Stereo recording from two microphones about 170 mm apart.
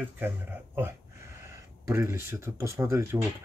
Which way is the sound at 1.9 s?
15° right (ahead or behind).